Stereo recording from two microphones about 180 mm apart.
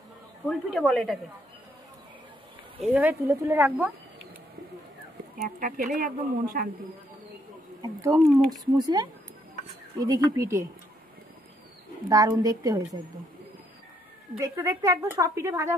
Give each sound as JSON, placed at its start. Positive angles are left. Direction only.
{"t": 0.5, "sound": "speech", "side_deg": 0}
{"t": 2.9, "sound": "a woman's voice", "side_deg": -10}
{"t": 5.4, "sound": "speech", "side_deg": -50}
{"t": 7.8, "sound": "speech", "side_deg": -20}
{"t": 12.1, "sound": "speech", "side_deg": -20}
{"t": 14.3, "sound": "a woman's voice", "side_deg": -15}